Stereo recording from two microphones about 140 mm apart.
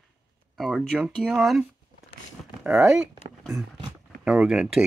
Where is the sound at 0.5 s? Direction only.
Centre (ahead or behind).